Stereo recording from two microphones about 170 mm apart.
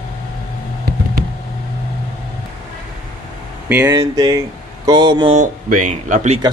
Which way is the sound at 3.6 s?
10° right (ahead or behind).